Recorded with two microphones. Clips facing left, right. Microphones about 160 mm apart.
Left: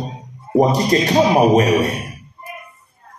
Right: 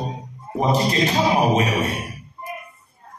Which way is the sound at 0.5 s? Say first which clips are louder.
Left 6 dB; 40° left (ahead or behind).